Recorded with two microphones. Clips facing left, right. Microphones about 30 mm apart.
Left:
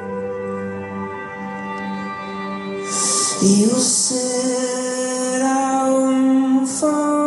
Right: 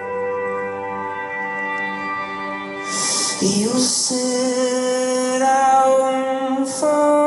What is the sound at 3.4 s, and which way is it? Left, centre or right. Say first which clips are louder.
Music: left 3 dB; right.